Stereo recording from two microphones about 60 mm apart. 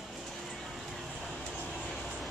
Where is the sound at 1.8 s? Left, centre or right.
Centre.